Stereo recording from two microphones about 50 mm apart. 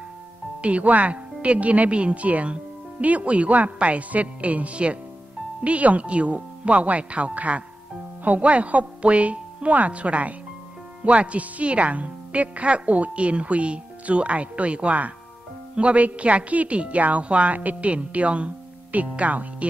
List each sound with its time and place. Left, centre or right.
0.6 s a woman's voice: right